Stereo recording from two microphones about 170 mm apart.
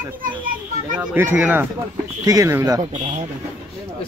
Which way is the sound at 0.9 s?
10° right (ahead or behind).